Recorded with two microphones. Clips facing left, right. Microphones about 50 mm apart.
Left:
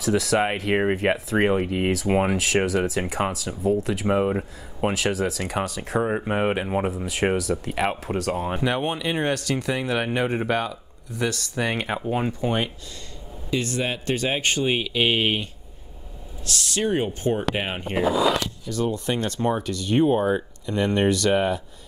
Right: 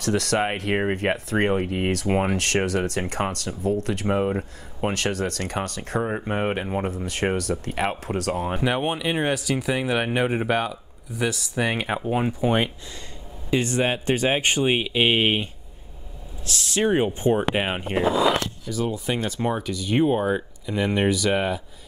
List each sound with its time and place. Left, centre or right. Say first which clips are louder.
0.0 s speech: left 1 dB; centre; by 15.4 s right
16.4 s speech: right 2 dB; right; by 21.5 s centre